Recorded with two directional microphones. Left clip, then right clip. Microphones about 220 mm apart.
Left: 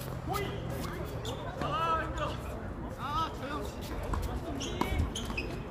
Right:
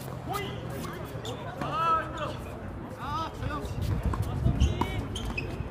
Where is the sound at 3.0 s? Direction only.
5° left (ahead or behind).